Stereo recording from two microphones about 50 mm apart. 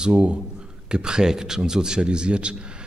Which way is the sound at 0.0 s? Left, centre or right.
Right.